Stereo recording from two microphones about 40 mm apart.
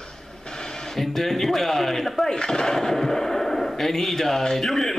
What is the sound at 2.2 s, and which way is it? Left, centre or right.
Speech, centre.